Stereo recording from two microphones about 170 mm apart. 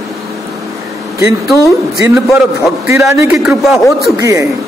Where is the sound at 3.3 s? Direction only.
Centre (ahead or behind).